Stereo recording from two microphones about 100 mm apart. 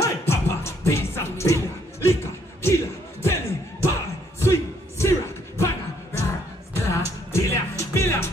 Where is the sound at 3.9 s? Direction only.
30° left (ahead or behind).